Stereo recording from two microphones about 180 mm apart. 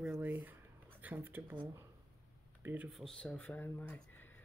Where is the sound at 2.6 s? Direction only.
10° right (ahead or behind).